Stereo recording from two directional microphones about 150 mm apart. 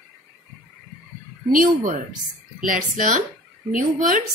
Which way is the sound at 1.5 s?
65° right (ahead or behind).